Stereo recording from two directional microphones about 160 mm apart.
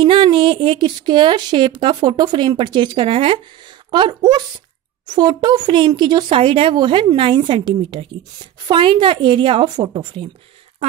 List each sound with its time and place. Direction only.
0.0 s a woman's voice: 30° right (ahead or behind)